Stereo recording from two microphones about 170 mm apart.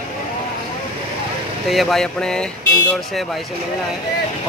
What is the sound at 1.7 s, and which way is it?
Speech, centre (ahead or behind).